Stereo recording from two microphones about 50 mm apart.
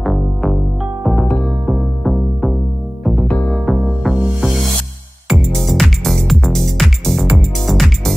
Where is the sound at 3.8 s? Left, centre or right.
Centre.